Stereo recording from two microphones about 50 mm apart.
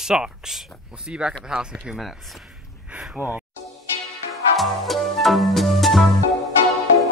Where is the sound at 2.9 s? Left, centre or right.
Right.